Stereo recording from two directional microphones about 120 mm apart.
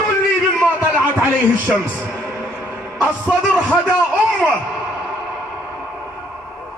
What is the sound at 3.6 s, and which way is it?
Speech, 10° right (ahead or behind).